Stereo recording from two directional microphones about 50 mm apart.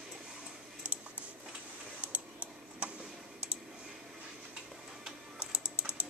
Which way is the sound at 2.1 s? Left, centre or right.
Right.